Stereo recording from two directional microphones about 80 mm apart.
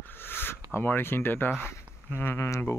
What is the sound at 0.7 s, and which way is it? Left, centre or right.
Speech, left.